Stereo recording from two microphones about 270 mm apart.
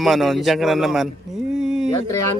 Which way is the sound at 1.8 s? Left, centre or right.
Centre.